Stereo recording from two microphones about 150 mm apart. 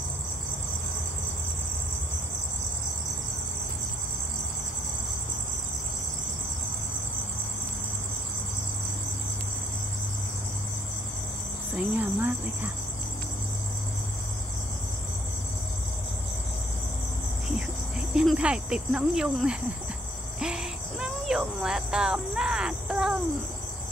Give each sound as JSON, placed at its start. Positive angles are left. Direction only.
{"t": 12.0, "sound": "cricket", "side_deg": -15}
{"t": 18.1, "sound": "cricket", "side_deg": -5}